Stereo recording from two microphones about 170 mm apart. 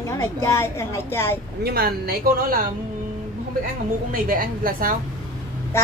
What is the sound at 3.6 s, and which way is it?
A woman's voice, 55° right (ahead or behind).